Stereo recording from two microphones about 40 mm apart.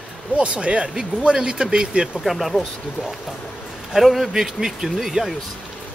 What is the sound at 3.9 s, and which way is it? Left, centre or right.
Speech, centre.